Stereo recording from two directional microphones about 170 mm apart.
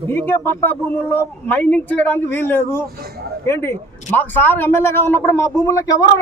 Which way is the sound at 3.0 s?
65° right (ahead or behind).